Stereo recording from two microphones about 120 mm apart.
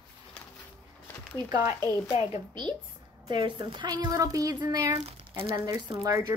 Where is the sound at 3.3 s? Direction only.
40° right (ahead or behind).